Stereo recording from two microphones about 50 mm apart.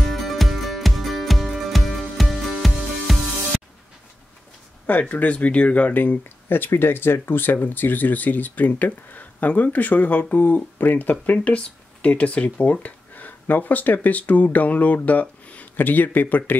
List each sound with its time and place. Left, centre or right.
0.0 s music: centre
4.8 s speech: left
6.7 s speech: left